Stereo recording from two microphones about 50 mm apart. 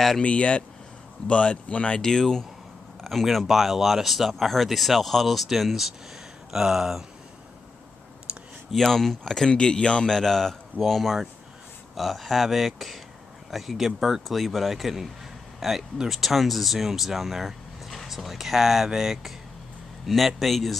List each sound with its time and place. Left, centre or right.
0.2 s speech: left; by 7.1 s centre
8.7 s speech: centre
10.1 s speech: centre
14.2 s speech: centre